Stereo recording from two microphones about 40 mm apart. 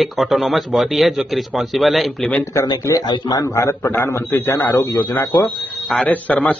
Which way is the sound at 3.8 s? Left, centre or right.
Left.